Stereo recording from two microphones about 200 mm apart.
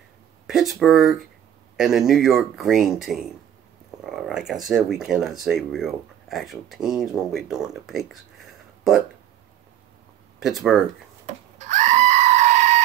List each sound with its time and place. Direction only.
0.5 s a sound: centre (ahead or behind)
1.8 s speech: centre (ahead or behind)
10.4 s speech: centre (ahead or behind)
11.2 s goat: 35° right (ahead or behind)